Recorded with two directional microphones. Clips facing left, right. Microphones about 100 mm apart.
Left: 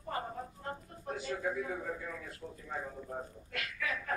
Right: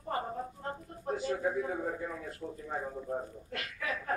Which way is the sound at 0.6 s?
35° right (ahead or behind).